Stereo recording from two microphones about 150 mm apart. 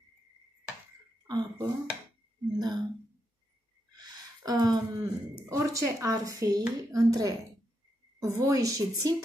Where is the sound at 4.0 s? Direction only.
25° right (ahead or behind).